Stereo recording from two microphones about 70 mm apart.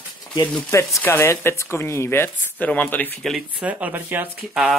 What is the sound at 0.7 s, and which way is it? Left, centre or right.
Speech, left.